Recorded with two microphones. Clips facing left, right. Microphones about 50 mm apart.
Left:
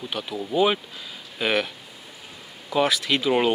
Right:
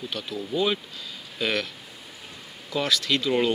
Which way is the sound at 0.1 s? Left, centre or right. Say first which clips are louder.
Left 4 dB; centre.